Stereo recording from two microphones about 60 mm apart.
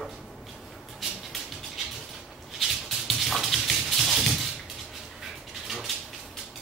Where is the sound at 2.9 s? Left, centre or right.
Centre.